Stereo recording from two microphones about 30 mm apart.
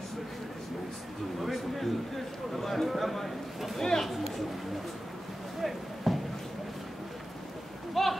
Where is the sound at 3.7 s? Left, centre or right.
Centre.